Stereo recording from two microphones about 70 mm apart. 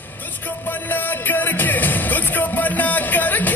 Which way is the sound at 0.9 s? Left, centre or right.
Left.